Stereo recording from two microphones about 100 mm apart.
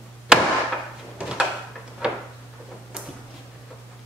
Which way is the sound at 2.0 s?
10° right (ahead or behind).